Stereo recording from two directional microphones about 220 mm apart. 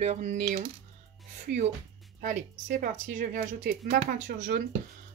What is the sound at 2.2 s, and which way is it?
A woman's voice, 40° right (ahead or behind).